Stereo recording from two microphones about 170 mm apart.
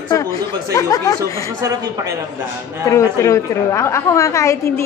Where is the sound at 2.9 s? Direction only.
15° left (ahead or behind).